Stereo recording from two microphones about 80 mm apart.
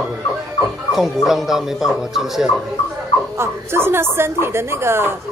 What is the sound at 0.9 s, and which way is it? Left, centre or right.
Speech, centre.